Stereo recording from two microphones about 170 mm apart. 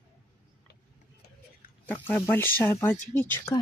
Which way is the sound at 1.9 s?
10° left (ahead or behind).